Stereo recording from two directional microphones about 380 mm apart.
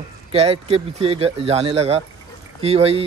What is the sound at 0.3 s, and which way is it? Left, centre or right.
Speech, centre.